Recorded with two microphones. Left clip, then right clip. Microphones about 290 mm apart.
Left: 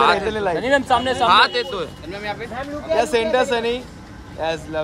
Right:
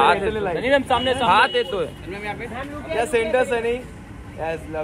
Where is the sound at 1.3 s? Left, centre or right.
Centre.